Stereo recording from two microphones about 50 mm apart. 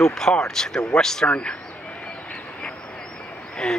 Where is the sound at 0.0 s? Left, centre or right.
Centre.